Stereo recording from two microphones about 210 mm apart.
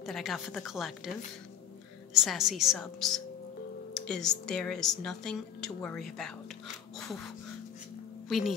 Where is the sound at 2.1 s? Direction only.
Centre (ahead or behind).